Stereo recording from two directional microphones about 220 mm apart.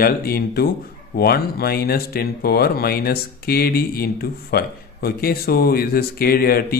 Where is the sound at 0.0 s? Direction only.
45° left (ahead or behind).